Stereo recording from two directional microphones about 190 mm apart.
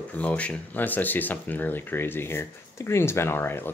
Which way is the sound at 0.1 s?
5° left (ahead or behind).